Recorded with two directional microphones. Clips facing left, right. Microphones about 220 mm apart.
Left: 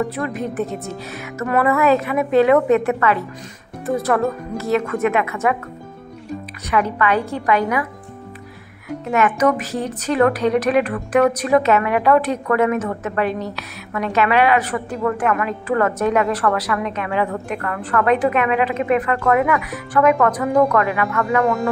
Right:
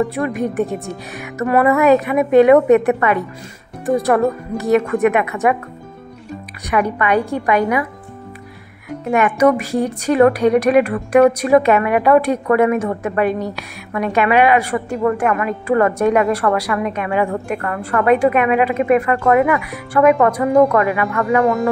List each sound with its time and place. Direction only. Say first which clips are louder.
0.1 s a woman's voice: right 4 dB; 10° right (ahead or behind)
6.7 s a woman's voice: right 2 dB; 15° right (ahead or behind)
9.1 s a woman's voice: right 3 dB; 10° right (ahead or behind)
21.4 s speech: right 3 dB; centre (ahead or behind)